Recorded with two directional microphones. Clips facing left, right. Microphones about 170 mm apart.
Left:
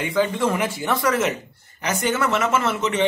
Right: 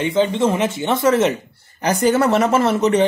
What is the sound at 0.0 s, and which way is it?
Speech, 25° right (ahead or behind).